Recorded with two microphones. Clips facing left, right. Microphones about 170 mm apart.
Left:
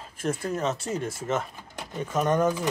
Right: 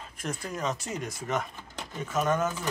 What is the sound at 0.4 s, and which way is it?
Speech, 30° left (ahead or behind).